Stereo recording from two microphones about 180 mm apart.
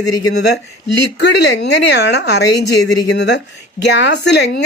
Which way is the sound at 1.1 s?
70° left (ahead or behind).